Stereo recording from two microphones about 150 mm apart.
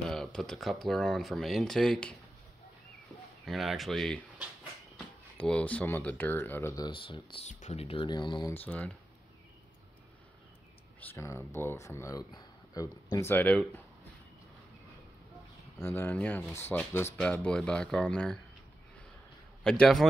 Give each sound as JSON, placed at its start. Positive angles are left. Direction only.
{"t": 0.1, "sound": "speech", "side_deg": 5}
{"t": 3.4, "sound": "speech", "side_deg": 0}
{"t": 6.9, "sound": "speech", "side_deg": 35}
{"t": 7.4, "sound": "speech", "side_deg": 45}
{"t": 8.5, "sound": "speech", "side_deg": 10}
{"t": 11.0, "sound": "speech", "side_deg": 15}
{"t": 15.8, "sound": "speech", "side_deg": 15}
{"t": 19.6, "sound": "speech", "side_deg": 5}